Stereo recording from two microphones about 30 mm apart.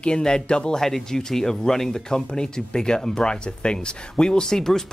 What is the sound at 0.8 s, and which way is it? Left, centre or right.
Speech, centre.